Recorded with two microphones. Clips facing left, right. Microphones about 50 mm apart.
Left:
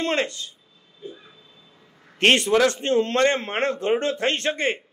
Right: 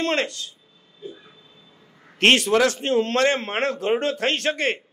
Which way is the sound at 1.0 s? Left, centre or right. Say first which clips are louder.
Right 1 dB; centre.